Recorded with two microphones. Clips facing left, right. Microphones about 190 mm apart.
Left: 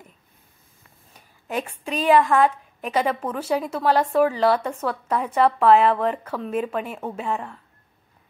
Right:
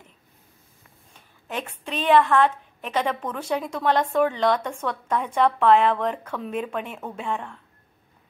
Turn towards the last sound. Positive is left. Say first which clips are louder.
# left 2 dB
turn(degrees=5)  # may be behind; listen again after turning